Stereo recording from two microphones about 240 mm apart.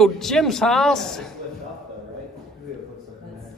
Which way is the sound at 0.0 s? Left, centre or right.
Centre.